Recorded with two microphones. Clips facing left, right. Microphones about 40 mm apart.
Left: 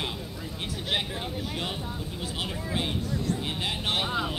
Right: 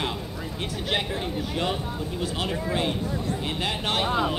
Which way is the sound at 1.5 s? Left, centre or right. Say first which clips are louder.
Right 5 dB; centre.